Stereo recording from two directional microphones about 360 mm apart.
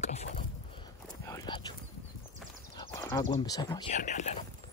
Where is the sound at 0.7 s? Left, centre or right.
Centre.